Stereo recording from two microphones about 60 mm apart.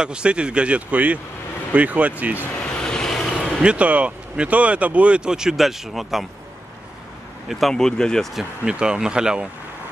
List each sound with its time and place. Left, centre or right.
0.0 s speech: centre
2.6 s vehicle: centre
3.6 s speech: right; by 6.2 s centre
7.4 s speech: centre
7.7 s speech: centre
8.4 s speech: centre